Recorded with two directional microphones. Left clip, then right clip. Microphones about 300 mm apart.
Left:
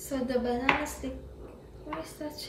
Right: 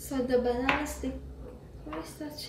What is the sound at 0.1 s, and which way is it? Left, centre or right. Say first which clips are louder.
A woman's voice: right 2 dB; centre.